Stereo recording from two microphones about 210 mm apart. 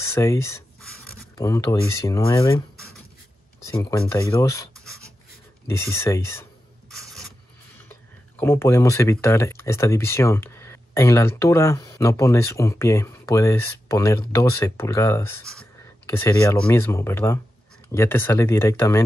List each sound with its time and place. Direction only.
0.0 s speech: 15° left (ahead or behind)
3.6 s speech: 15° left (ahead or behind)
5.7 s speech: 10° left (ahead or behind)
7.0 s mechanisms: centre (ahead or behind)
8.4 s speech: 10° left (ahead or behind)